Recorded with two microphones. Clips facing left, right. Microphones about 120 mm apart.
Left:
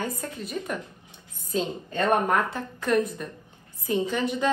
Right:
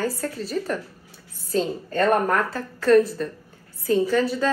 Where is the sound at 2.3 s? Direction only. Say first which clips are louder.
Right 1 dB; 20° left (ahead or behind).